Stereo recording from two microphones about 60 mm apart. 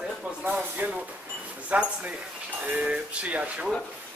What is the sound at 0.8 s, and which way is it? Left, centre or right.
Speech, right.